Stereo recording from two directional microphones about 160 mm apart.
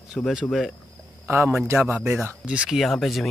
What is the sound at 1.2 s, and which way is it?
A man's voice, 15° right (ahead or behind).